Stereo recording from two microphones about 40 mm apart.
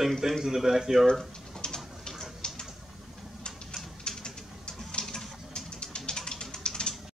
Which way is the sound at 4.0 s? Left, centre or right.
Centre.